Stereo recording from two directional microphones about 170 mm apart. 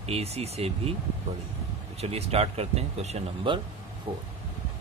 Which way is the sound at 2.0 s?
35° right (ahead or behind).